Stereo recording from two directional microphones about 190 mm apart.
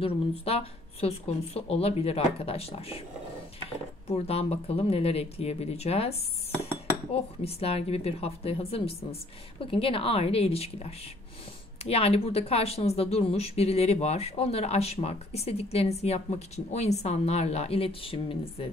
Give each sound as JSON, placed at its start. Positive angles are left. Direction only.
{"t": 0.0, "sound": "speech", "side_deg": 30}
{"t": 4.1, "sound": "speech", "side_deg": 30}
{"t": 7.4, "sound": "speech", "side_deg": 30}